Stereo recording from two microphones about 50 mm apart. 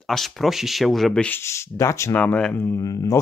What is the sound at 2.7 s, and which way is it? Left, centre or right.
Speech, left.